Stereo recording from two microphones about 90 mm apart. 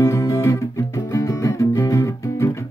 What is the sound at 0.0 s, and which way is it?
Music, 40° left (ahead or behind).